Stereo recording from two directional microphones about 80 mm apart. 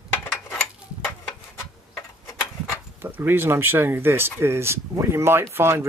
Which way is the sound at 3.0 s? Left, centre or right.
Right.